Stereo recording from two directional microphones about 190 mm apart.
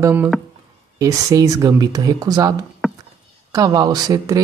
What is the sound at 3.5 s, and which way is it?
Speech, 20° right (ahead or behind).